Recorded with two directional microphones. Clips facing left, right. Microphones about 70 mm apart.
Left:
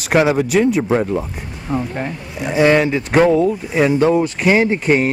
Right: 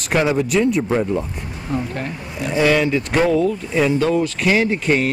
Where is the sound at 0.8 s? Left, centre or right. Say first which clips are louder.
Left 3 dB; left.